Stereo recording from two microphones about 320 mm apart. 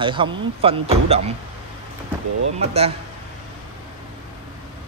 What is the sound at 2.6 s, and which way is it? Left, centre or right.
Speech, centre.